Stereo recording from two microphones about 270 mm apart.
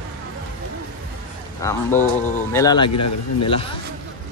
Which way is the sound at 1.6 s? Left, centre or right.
Centre.